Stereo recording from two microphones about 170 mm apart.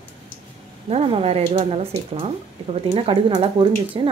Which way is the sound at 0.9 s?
35° right (ahead or behind).